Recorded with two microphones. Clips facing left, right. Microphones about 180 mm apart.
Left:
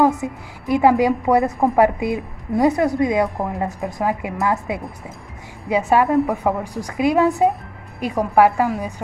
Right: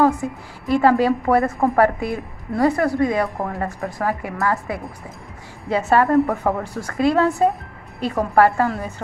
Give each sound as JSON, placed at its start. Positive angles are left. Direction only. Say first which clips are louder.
{"t": 0.0, "sound": "a woman's voice", "louder": "even", "side_deg": 20}